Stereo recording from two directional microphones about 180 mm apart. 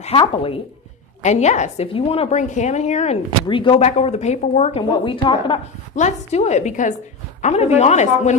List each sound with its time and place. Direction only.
0.0 s a woman's voice: 30° left (ahead or behind)
4.9 s a woman's voice: 30° left (ahead or behind)
5.9 s a woman's voice: 40° left (ahead or behind)